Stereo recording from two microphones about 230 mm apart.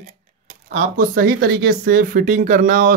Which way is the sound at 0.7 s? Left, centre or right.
Right.